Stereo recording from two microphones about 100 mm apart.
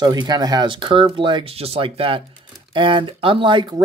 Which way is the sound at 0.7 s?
60° right (ahead or behind).